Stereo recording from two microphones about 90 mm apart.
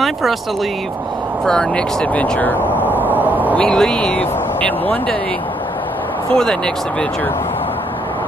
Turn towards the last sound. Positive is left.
turn(degrees=20)  # may be behind; listen again after turning